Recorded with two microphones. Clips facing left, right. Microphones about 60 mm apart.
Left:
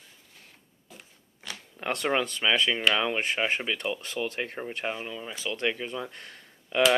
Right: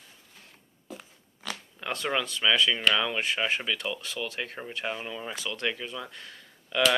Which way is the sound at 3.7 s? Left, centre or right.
Left.